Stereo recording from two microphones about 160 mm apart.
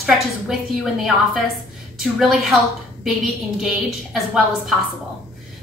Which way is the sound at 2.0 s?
Centre (ahead or behind).